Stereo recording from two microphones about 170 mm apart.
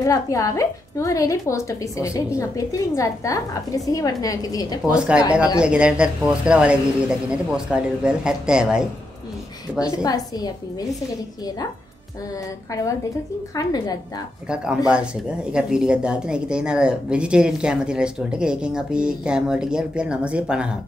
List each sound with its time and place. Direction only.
0.0 s a woman's voice: 20° left (ahead or behind)
4.9 s speech: 5° right (ahead or behind)
10.0 s a woman's voice: 20° left (ahead or behind)
13.6 s a woman's voice: 25° left (ahead or behind)
14.5 s speech: 5° right (ahead or behind)